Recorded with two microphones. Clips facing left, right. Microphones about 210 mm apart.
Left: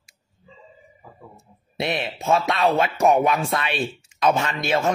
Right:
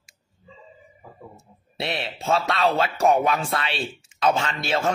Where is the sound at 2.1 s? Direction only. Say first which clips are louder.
Left 1 dB; 15° left (ahead or behind).